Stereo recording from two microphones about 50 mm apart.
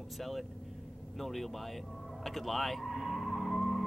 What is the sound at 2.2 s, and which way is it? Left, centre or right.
Vehicle, centre.